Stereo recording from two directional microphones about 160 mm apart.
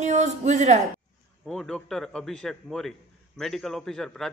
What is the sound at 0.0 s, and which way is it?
Speech, 45° right (ahead or behind).